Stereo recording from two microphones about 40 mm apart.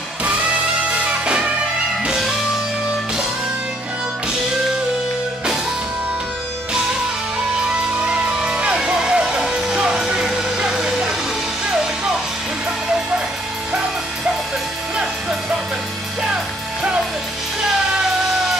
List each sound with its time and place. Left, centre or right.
1.2 s music: right
8.1 s music: right
10.6 s vehicle: right